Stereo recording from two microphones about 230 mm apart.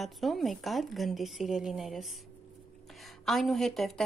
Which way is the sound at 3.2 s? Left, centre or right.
Centre.